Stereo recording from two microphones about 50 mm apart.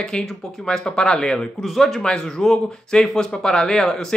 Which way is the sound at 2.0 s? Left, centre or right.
Centre.